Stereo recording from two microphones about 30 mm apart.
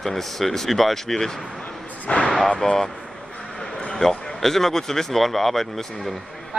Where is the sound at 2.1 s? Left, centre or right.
Left.